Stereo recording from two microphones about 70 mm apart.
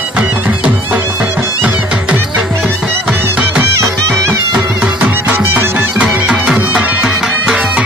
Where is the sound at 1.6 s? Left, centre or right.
Right.